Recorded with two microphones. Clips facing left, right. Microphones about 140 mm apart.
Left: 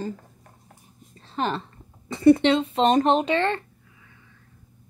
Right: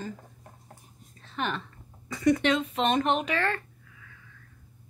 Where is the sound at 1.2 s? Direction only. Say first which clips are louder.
Left 5 dB; 35° left (ahead or behind).